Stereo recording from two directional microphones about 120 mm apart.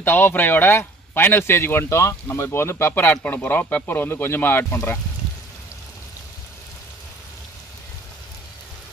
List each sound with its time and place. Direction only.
0.0 s speech: 15° left (ahead or behind)